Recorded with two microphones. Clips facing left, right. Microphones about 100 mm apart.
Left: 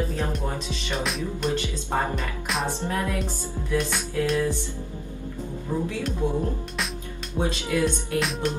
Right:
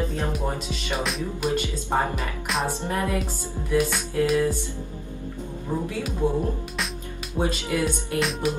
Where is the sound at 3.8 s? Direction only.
5° right (ahead or behind).